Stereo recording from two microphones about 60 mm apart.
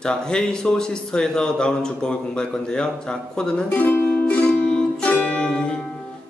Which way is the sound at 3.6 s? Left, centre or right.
Left.